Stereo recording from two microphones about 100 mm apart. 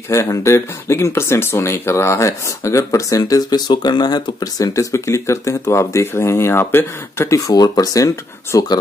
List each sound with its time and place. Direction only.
0.1 s speech: 30° left (ahead or behind)